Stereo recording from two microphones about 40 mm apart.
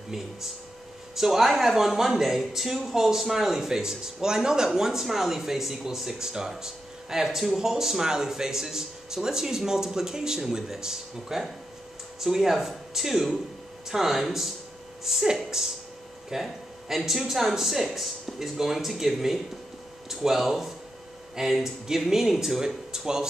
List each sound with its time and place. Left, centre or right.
1.1 s speech: centre